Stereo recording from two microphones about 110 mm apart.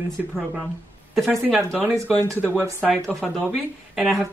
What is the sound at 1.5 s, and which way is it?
Speech, 15° right (ahead or behind).